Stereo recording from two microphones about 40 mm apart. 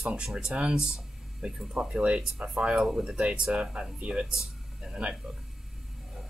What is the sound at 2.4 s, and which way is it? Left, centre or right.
Speech, right.